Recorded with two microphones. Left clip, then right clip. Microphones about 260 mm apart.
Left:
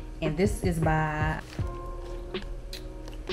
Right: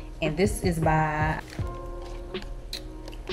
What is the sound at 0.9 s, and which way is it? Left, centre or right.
Speech, left.